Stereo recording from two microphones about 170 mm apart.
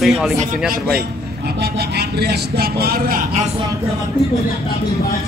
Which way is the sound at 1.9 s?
65° right (ahead or behind).